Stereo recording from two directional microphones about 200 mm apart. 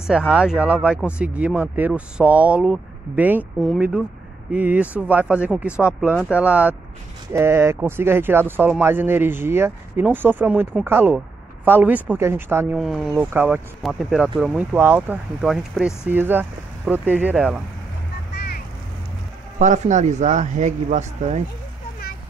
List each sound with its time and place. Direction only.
0.0 s speech: centre (ahead or behind)
18.3 s boat: 55° left (ahead or behind)
19.6 s speech: 35° right (ahead or behind)